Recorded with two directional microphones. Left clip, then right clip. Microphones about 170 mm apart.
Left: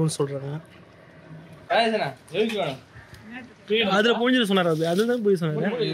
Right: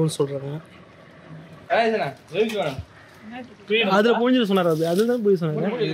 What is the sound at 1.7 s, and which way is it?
A man's voice, 55° left (ahead or behind).